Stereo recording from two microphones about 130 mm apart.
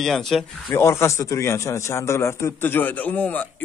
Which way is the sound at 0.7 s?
20° left (ahead or behind).